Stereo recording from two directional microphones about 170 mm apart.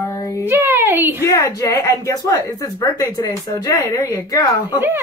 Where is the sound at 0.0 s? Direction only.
20° left (ahead or behind).